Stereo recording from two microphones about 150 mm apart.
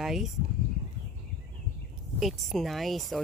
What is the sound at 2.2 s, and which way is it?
Speech, centre (ahead or behind).